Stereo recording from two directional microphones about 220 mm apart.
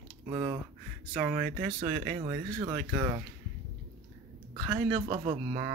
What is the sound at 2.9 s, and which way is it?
Speech, 15° right (ahead or behind).